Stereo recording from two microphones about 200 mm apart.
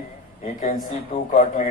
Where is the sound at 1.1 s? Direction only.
40° left (ahead or behind).